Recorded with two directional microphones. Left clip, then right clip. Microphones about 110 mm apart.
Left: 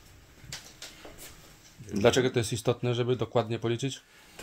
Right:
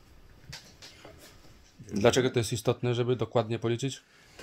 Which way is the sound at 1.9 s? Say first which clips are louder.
Even; 25° right (ahead or behind).